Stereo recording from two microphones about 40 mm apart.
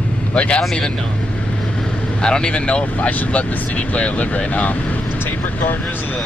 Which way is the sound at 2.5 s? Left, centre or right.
Left.